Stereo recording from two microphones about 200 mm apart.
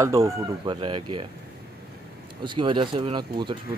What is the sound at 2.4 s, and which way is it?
Speech, 25° right (ahead or behind).